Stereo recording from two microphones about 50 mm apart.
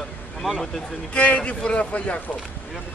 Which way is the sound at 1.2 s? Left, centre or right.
Left.